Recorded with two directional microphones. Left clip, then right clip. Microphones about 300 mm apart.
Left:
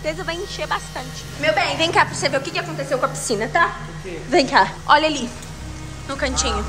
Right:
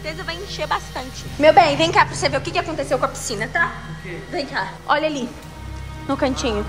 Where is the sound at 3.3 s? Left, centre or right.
Centre.